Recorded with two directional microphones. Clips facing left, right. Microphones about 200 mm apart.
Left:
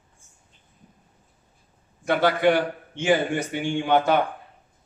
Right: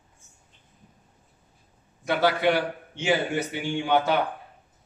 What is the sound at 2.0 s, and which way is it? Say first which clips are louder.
A man's voice: left 3 dB; 50° left (ahead or behind).